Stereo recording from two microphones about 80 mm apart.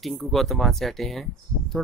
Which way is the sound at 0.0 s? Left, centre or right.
Centre.